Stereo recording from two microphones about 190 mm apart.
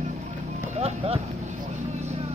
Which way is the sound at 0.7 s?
30° right (ahead or behind).